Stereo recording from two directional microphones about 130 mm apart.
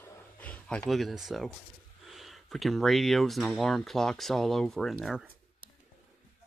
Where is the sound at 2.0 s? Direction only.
Centre (ahead or behind).